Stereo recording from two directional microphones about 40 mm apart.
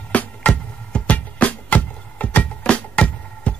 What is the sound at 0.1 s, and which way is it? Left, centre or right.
Music, left.